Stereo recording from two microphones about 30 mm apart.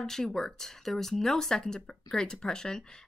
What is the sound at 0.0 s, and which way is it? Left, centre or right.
Speech, centre.